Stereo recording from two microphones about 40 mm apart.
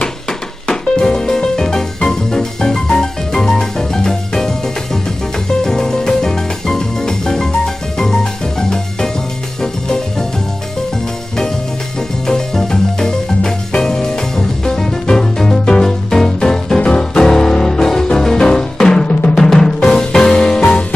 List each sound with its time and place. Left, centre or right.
0.7 s music: centre
5.6 s music: centre
12.3 s music: centre